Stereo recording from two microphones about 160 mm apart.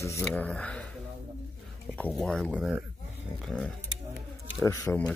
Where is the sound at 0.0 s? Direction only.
20° left (ahead or behind).